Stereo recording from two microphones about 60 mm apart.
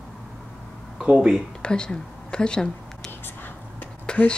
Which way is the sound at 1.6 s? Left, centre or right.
Centre.